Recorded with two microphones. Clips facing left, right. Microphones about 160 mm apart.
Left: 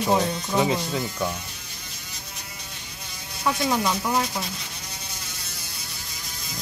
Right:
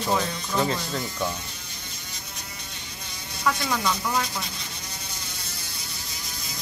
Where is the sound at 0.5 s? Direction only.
15° left (ahead or behind).